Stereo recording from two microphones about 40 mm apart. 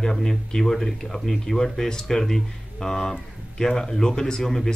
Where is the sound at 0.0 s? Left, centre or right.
Centre.